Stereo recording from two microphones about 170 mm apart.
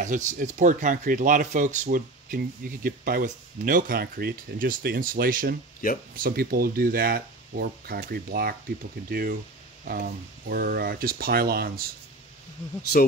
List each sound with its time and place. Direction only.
0.0 s speech: 45° right (ahead or behind); by 11.9 s 60° right (ahead or behind)